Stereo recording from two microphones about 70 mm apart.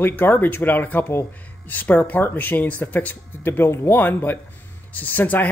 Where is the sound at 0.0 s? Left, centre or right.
Left.